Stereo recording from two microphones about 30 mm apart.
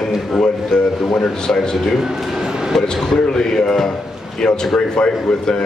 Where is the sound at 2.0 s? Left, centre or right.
Right.